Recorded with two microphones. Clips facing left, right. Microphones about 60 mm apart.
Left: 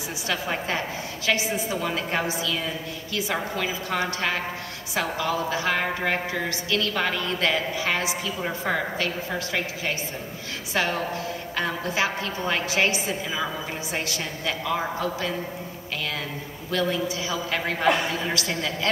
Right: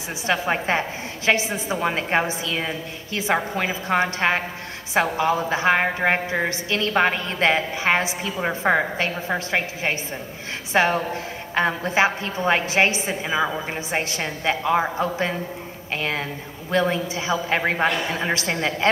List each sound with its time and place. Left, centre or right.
0.3 s a woman's voice: right